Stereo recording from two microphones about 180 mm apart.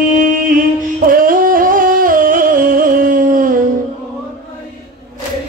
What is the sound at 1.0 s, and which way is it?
Music, 50° right (ahead or behind).